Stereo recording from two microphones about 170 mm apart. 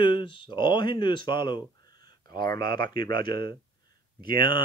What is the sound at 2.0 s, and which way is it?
Speech, 25° left (ahead or behind).